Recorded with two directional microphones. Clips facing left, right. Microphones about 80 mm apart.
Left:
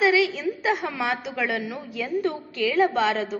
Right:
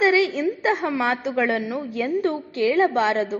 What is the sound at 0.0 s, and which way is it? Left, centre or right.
A woman's voice, right.